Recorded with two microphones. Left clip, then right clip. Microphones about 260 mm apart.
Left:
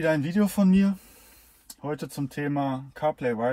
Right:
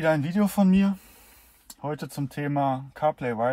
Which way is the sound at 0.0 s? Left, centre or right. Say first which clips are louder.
Right 1 dB; right.